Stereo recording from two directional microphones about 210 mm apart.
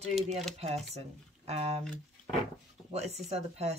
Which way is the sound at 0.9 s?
30° right (ahead or behind).